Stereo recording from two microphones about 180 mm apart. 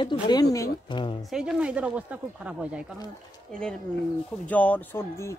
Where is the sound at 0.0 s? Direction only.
25° left (ahead or behind).